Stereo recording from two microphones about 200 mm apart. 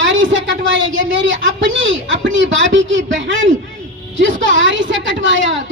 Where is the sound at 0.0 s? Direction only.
70° right (ahead or behind).